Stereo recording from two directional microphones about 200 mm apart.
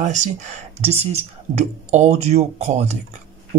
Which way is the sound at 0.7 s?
30° right (ahead or behind).